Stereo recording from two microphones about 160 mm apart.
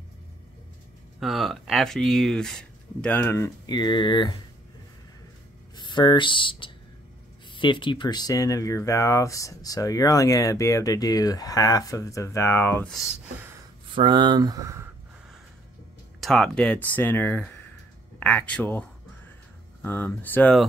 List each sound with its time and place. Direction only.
1.2 s speech: centre (ahead or behind); by 4.4 s 30° left (ahead or behind)
5.8 s speech: 30° left (ahead or behind)
13.9 s speech: 30° right (ahead or behind)
16.2 s speech: 5° left (ahead or behind)